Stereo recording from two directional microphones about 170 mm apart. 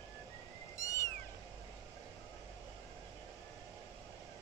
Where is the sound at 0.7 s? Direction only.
20° left (ahead or behind).